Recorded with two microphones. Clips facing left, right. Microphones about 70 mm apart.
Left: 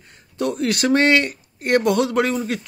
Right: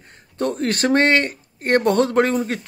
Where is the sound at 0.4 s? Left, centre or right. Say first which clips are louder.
Even; right.